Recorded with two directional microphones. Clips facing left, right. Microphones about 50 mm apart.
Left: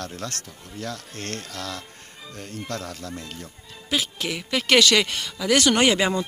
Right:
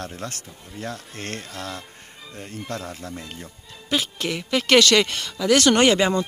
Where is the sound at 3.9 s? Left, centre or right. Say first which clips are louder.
Right 2 dB; centre.